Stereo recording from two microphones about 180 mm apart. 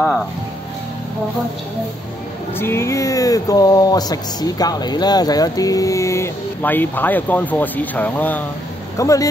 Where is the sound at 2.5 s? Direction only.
15° left (ahead or behind).